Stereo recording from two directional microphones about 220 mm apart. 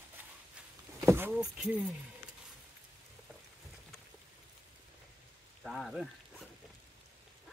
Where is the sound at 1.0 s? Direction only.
10° right (ahead or behind).